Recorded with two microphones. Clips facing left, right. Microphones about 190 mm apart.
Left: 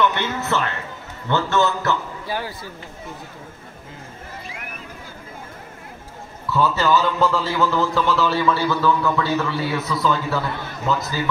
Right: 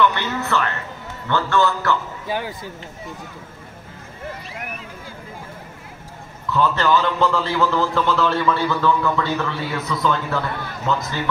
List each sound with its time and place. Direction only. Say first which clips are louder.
0.1 s music: even; 20° left (ahead or behind)
1.3 s a man's voice: even; 20° left (ahead or behind)
2.2 s speech: right 2 dB; 15° right (ahead or behind)
6.5 s a man's voice: even; 5° left (ahead or behind)